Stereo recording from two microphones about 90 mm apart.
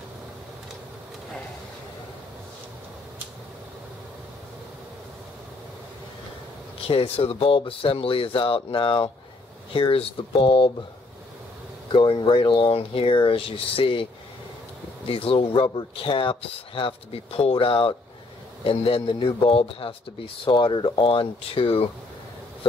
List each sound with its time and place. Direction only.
6.9 s speech: 90° left; by 9.1 s 75° left (ahead or behind)
9.8 s speech: 85° left
11.9 s speech: 70° left (ahead or behind); by 14.0 s 90° left
15.0 s speech: 90° left
18.6 s speech: 90° left
20.4 s speech: 65° left (ahead or behind); by 21.8 s 85° left